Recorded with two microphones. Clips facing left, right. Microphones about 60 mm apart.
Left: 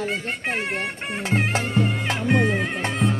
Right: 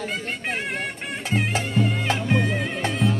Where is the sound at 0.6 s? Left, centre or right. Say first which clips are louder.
Left 1 dB; left.